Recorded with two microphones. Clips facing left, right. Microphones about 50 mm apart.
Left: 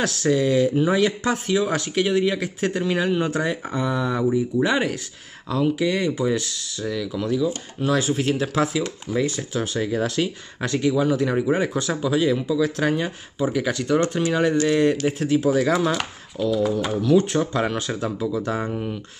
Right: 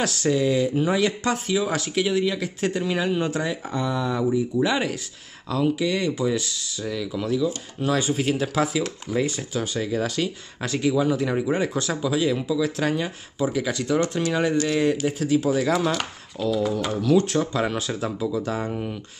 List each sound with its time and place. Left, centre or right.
0.0 s speech: centre
4.3 s speech: centre
9.5 s speech: centre
10.0 s speech: centre
15.0 s speech: centre
18.3 s speech: centre
18.7 s speech: centre